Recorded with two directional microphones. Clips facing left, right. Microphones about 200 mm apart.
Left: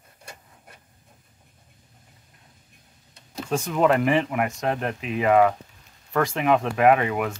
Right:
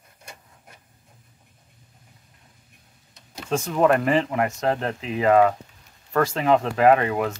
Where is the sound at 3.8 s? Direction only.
20° left (ahead or behind).